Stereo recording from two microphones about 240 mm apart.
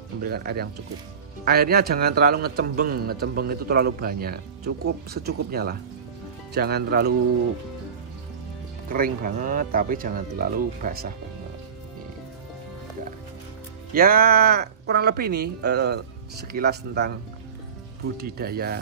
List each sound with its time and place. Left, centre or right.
0.2 s a man's voice: right
8.8 s a man's voice: right
13.9 s a man's voice: right
18.1 s a man's voice: right